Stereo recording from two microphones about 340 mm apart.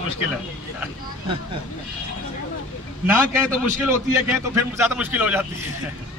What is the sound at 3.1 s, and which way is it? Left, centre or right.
A man's voice, centre.